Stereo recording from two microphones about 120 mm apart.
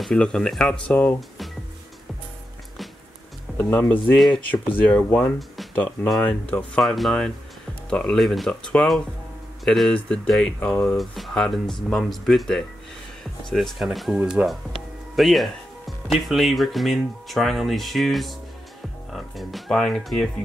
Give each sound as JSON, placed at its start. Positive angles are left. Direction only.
{"t": 0.0, "sound": "speech", "side_deg": 5}
{"t": 3.5, "sound": "speech", "side_deg": 15}
{"t": 6.8, "sound": "speech", "side_deg": 0}